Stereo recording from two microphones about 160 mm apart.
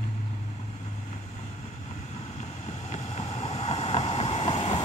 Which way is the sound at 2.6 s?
45° left (ahead or behind).